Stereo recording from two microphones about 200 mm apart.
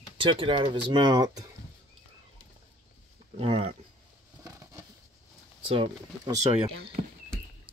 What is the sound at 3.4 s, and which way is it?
Speech, 30° right (ahead or behind).